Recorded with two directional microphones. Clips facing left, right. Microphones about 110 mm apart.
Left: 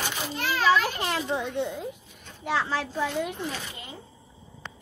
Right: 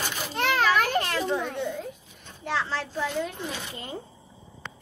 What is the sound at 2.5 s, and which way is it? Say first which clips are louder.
Speech: left 2 dB; 10° left (ahead or behind).